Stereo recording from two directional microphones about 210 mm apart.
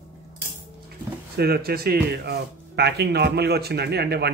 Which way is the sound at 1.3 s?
50° right (ahead or behind).